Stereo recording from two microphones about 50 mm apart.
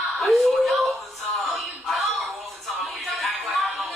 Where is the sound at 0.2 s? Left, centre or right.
Centre.